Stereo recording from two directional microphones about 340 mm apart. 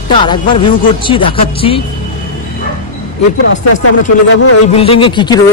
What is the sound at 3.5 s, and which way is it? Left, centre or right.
Speech, left.